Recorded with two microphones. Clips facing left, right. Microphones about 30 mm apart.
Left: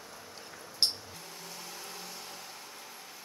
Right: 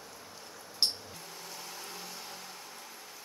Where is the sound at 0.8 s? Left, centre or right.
Centre.